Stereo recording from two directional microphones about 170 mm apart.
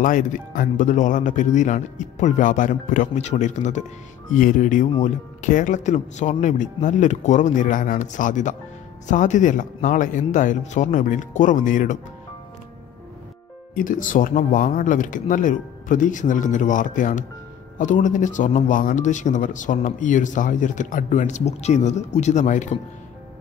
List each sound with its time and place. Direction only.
0.0 s speech: 50° left (ahead or behind)
13.7 s speech: 50° left (ahead or behind)